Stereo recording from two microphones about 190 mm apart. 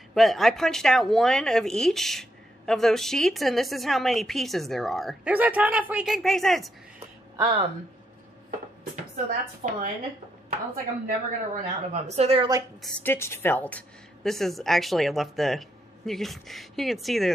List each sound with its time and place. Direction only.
0.1 s a woman's voice: centre (ahead or behind)
7.3 s speech: 25° right (ahead or behind)
9.6 s a woman's voice: 40° right (ahead or behind)
11.1 s a woman's voice: 40° right (ahead or behind)
12.8 s a woman's voice: 10° left (ahead or behind)